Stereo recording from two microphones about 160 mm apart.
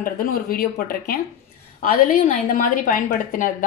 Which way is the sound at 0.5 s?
65° left (ahead or behind).